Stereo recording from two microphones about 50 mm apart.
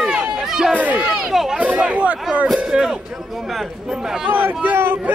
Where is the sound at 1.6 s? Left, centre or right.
Right.